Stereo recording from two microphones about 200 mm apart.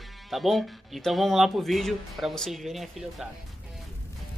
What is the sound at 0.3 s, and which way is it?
Speech, centre (ahead or behind).